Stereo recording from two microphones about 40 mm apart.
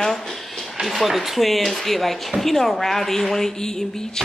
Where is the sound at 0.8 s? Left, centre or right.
Centre.